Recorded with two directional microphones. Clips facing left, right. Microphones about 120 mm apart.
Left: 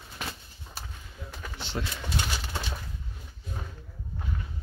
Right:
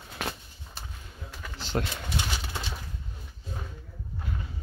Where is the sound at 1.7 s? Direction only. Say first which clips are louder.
Right 5 dB; 50° right (ahead or behind).